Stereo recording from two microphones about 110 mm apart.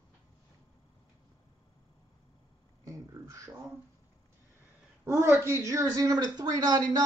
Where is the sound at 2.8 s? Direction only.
30° right (ahead or behind).